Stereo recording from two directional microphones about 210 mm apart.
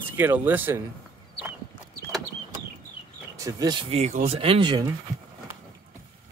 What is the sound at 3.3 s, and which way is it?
Speech, 15° right (ahead or behind).